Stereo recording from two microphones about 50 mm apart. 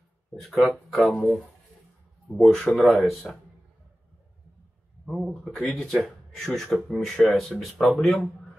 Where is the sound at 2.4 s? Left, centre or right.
Centre.